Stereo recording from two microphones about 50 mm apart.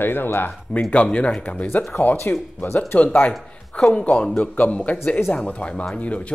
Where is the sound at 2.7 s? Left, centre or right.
Left.